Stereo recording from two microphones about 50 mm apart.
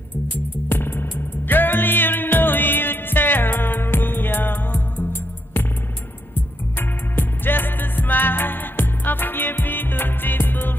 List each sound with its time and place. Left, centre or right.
0.7 s music: left
6.8 s music: left